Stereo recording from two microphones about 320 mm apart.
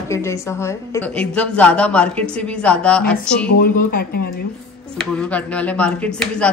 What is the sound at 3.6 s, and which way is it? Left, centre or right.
Speech, left.